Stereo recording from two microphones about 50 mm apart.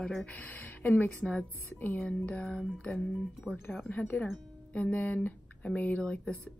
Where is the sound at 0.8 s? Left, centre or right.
Left.